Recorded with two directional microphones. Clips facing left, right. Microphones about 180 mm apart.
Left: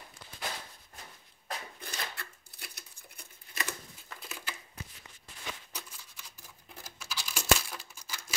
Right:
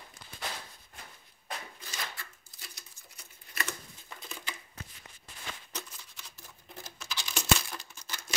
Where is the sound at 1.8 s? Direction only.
60° left (ahead or behind).